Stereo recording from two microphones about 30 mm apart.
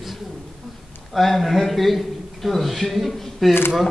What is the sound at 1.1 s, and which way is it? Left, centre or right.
A man's voice, centre.